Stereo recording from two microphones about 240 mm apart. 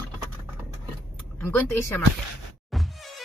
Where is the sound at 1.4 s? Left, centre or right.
Centre.